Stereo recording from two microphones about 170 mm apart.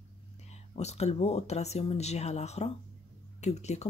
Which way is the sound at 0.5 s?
40° left (ahead or behind).